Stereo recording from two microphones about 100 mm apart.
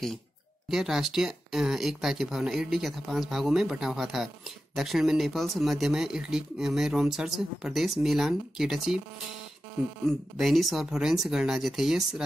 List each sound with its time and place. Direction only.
0.7 s speech: 5° right (ahead or behind)
10.3 s speech: centre (ahead or behind)